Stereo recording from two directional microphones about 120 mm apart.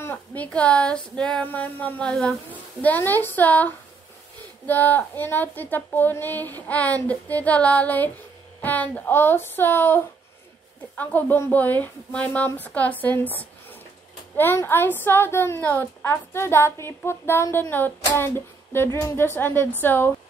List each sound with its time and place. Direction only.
0.0 s a woman's voice: 15° left (ahead or behind)